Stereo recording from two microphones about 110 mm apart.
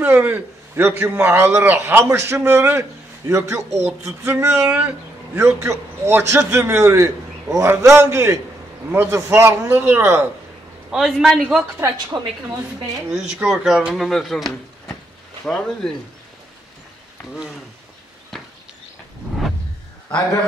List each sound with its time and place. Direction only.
0.0 s a man's voice: 15° right (ahead or behind)
10.9 s speech: 5° right (ahead or behind)
12.1 s a woman's voice: 30° right (ahead or behind)
13.1 s speech: 5° right (ahead or behind)